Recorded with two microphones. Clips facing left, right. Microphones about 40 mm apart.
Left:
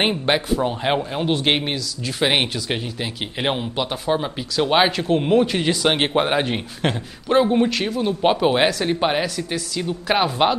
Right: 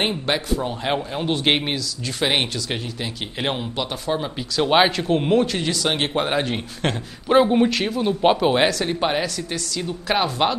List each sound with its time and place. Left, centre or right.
0.0 s speech: centre
4.6 s speech: centre
5.5 s speech: centre
7.2 s speech: centre